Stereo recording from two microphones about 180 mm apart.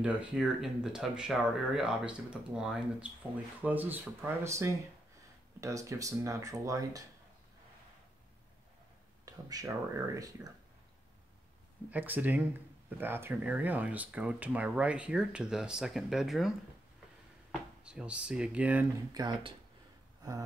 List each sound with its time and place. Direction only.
0.0 s speech: 5° right (ahead or behind)
9.2 s speech: 20° right (ahead or behind)
11.9 s speech: 10° right (ahead or behind)
19.1 s speech: 25° right (ahead or behind)
20.2 s a sound: 20° right (ahead or behind)